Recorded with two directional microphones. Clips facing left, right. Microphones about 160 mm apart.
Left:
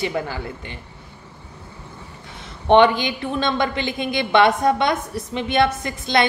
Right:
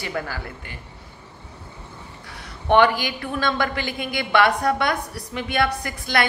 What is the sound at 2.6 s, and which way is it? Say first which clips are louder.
A woman's voice: left 3 dB; 20° left (ahead or behind).